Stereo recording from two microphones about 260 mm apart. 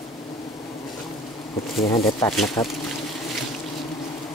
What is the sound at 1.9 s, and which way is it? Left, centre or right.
Speech, centre.